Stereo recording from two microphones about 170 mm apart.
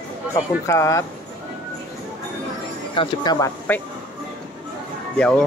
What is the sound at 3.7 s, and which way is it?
Speech, 10° left (ahead or behind).